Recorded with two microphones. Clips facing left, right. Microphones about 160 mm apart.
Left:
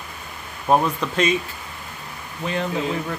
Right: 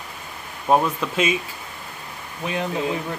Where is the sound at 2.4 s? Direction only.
15° right (ahead or behind).